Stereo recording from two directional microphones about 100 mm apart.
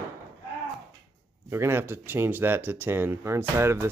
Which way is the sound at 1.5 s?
25° right (ahead or behind).